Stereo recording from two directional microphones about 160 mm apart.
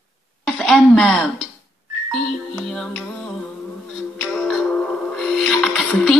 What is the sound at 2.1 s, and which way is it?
Music, 5° left (ahead or behind).